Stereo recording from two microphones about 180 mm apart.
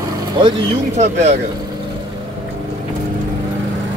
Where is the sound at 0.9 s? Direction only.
40° right (ahead or behind).